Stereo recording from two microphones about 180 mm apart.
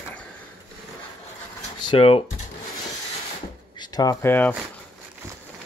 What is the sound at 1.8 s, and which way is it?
Speech, 30° left (ahead or behind).